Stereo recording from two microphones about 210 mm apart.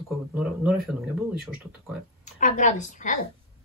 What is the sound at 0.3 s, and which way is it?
Speech, centre (ahead or behind).